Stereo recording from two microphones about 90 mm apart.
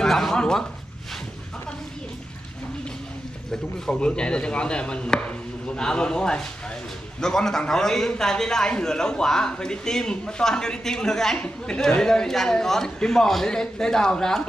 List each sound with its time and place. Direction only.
0.0 s speech: 5° left (ahead or behind)
3.8 s a man's voice: 10° left (ahead or behind)